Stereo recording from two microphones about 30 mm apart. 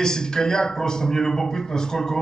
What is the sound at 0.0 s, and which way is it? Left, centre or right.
A man's voice, left.